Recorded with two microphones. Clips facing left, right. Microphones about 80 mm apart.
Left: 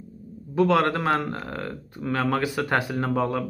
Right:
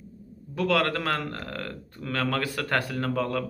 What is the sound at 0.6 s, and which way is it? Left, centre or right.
Speech, left.